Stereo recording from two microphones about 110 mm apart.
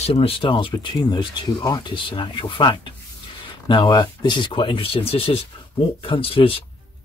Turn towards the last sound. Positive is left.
turn(degrees=55)  # may be behind; listen again after turning